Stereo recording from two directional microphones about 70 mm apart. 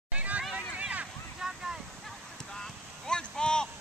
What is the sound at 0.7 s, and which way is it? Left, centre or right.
Vehicle, centre.